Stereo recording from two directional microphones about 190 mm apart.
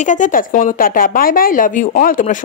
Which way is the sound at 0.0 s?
40° left (ahead or behind).